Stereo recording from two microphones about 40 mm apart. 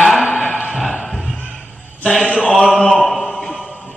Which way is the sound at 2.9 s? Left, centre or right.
Centre.